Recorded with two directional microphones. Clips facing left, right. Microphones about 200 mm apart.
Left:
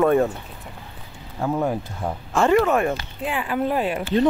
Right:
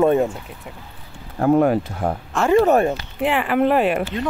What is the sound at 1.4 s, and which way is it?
Speech, 65° right (ahead or behind).